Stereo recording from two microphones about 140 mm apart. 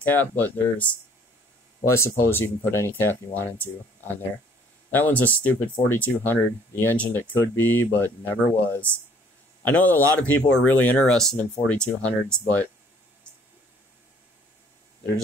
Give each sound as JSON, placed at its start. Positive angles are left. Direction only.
{"t": 0.0, "sound": "speech", "side_deg": 10}